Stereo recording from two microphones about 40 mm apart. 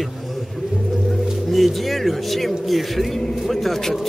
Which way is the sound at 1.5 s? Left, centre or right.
Centre.